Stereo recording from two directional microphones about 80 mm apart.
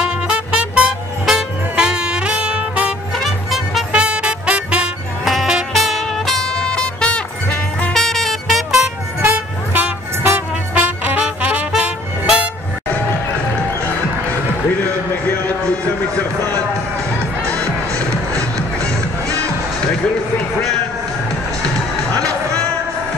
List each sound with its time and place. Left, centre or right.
0.0 s music: centre
3.2 s music: centre
3.9 s music: centre
5.2 s music: centre
9.8 s music: right
19.8 s music: centre